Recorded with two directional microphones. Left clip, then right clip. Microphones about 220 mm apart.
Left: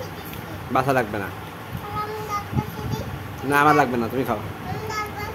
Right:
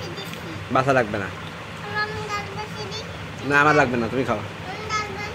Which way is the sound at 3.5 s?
5° left (ahead or behind).